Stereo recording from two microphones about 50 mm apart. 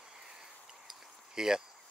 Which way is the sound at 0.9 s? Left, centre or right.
Centre.